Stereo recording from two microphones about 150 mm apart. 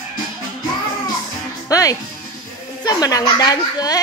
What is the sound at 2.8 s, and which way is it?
Speech, 25° left (ahead or behind).